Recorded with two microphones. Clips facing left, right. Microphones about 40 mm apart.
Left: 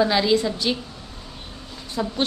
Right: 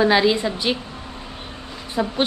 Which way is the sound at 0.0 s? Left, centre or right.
Right.